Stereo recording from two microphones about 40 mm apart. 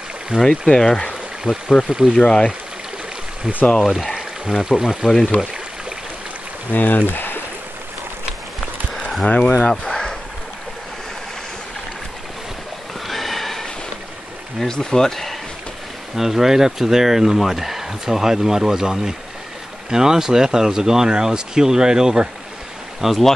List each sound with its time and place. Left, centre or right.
0.4 s speech: centre
1.5 s speech: centre
2.1 s speech: centre
3.8 s speech: centre
5.4 s a sound: centre
6.7 s speech: left
7.1 s a sound: left
9.3 s speech: left
9.6 s a sound: centre
13.0 s a sound: centre
14.6 s speech: centre
16.2 s speech: centre
22.9 s speech: centre